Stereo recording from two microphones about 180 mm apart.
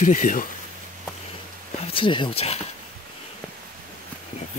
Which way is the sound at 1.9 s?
30° left (ahead or behind).